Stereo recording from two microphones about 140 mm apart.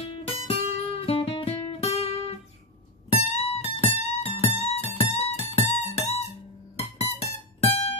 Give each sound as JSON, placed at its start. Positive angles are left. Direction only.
{"t": 0.1, "sound": "guitar", "side_deg": 45}
{"t": 3.1, "sound": "music", "side_deg": 45}